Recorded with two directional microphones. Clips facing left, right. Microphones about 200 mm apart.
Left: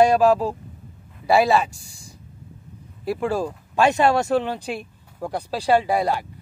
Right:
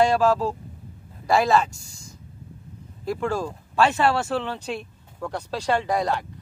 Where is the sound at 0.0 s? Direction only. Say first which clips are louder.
Left 3 dB; 15° left (ahead or behind).